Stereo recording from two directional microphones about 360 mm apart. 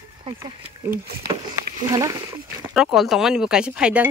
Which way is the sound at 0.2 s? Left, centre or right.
Centre.